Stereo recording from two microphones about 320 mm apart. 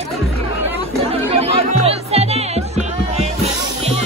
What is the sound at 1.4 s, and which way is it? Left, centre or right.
Music, centre.